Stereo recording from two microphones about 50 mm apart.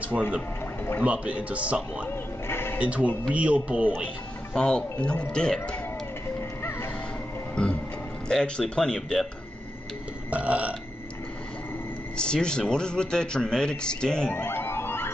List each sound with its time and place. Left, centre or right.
0.1 s a man's voice: centre
1.0 s speech: right
2.0 s speech: left
2.8 s speech: right
4.6 s a man's voice: centre
7.6 s music: centre
8.3 s a man's voice: centre
10.3 s speech: right
12.2 s a man's voice: centre
14.5 s music: left